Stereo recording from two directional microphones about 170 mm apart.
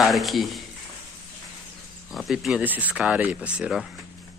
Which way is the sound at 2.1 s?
Centre (ahead or behind).